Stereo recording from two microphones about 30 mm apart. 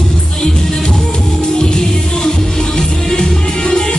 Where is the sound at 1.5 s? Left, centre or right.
Left.